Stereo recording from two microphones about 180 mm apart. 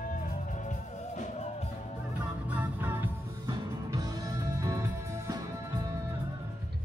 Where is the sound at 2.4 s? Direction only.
10° right (ahead or behind).